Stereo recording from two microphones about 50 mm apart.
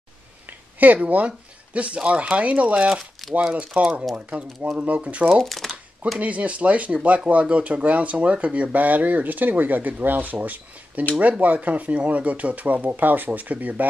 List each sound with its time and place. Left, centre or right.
0.5 s a sound: right
0.9 s speech: right
3.0 s speech: centre
3.8 s speech: right
5.3 s a sound: centre
6.1 s speech: right